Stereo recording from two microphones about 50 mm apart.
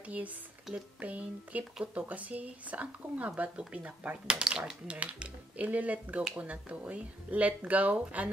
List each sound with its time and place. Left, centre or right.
0.0 s speech: right; by 4.9 s centre
4.9 s speech: right